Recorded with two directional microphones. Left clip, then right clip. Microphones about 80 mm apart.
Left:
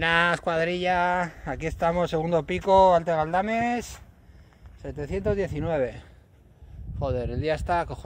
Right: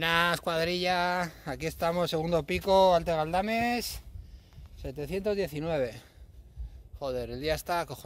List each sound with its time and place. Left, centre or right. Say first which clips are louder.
0.0 s speech: left 4 dB; centre; by 3.8 s right
5.0 s speech: left 3 dB; right
7.0 s speech: left 4 dB; centre